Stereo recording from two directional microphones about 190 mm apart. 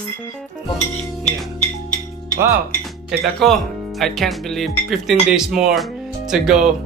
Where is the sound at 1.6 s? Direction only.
40° left (ahead or behind).